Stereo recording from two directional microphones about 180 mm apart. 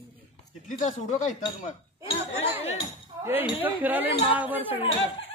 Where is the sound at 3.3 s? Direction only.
10° right (ahead or behind).